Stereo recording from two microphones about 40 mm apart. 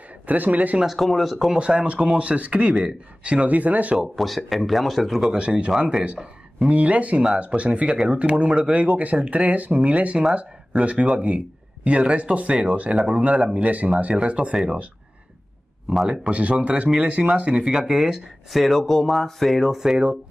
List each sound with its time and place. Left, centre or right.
0.3 s speech: right
0.9 s speech: centre
1.6 s speech: right
4.0 s speech: centre
5.8 s speech: centre
6.7 s speech: right
16.1 s speech: right; by 18.2 s centre
18.5 s speech: centre
19.7 s speech: centre